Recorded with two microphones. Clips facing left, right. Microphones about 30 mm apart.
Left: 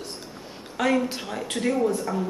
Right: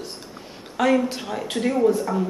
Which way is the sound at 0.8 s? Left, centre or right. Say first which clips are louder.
Right 3 dB; centre.